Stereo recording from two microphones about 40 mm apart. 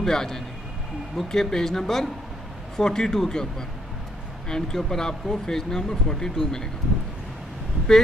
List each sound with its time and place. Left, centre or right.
0.0 s speech: centre